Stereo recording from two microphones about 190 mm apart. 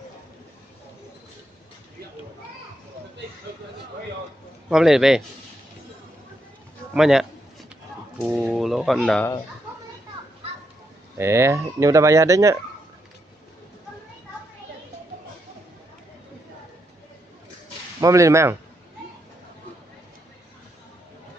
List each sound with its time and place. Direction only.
4.6 s speech: 5° right (ahead or behind)
6.9 s a man's voice: centre (ahead or behind)
11.1 s speech: 15° right (ahead or behind)
18.0 s speech: 15° right (ahead or behind)